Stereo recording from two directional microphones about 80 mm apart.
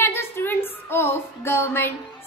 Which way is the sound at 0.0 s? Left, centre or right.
Left.